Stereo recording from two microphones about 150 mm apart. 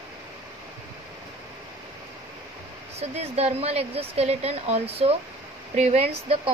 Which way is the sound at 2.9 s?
45° right (ahead or behind).